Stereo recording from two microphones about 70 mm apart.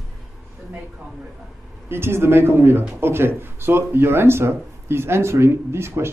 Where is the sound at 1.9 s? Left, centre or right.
Right.